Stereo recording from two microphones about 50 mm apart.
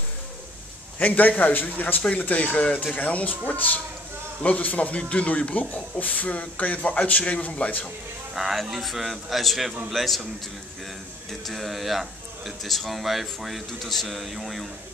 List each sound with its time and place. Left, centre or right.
0.9 s a man's voice: left
8.4 s speech: centre
11.4 s speech: centre